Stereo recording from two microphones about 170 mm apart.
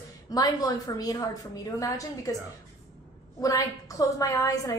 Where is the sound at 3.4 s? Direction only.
20° left (ahead or behind).